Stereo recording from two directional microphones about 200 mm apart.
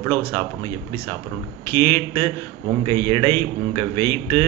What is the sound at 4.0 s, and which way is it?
Speech, 10° left (ahead or behind).